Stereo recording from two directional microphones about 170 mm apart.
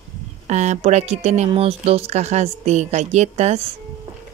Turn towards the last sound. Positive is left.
turn(degrees=-40)  # may be behind; listen again after turning